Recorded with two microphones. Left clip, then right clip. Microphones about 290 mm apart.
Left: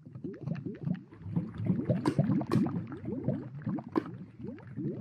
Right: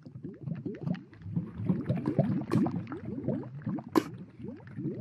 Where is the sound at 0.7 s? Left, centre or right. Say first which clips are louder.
Right 5 dB; centre.